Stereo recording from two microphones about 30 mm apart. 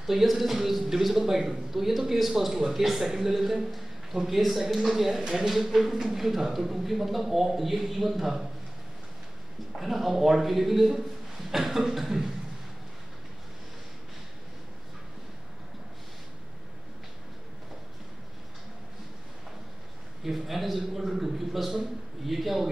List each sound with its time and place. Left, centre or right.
0.0 s a man's voice: centre
5.5 s a man's voice: centre
9.7 s speech: centre
10.1 s a man's voice: centre
20.2 s speech: centre
21.0 s a man's voice: centre
21.4 s speech: centre